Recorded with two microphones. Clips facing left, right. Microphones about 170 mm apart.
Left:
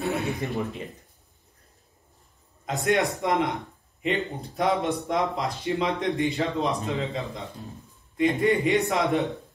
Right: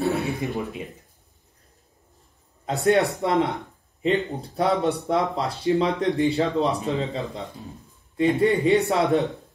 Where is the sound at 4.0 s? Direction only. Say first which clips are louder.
Right 4 dB; 35° right (ahead or behind).